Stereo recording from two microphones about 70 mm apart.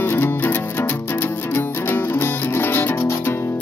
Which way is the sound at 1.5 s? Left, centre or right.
Left.